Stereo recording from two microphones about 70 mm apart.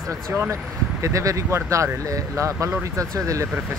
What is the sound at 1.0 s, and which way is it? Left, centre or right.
Speech, right.